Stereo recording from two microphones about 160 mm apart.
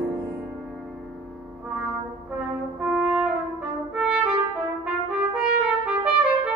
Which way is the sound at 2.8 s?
5° right (ahead or behind).